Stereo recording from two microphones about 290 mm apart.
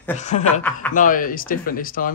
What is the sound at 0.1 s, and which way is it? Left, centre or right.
Speech, left.